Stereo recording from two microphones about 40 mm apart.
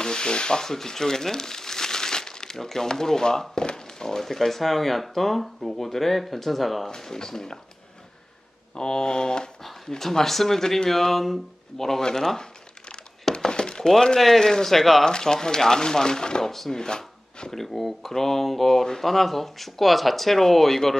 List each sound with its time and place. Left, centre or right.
0.0 s speech: centre
6.9 s speech: centre
8.7 s speech: centre
12.4 s crumpling: left
13.5 s speech: left; by 15.0 s centre
15.0 s speech: centre
16.5 s speech: centre
16.8 s a sound: centre
17.5 s speech: centre